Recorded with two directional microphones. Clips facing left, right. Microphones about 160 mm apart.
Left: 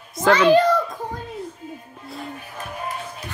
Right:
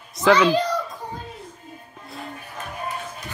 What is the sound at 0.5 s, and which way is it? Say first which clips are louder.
Speech: left 7 dB; 55° left (ahead or behind).